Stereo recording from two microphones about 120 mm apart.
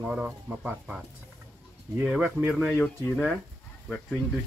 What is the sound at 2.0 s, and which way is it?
Speech, 10° right (ahead or behind).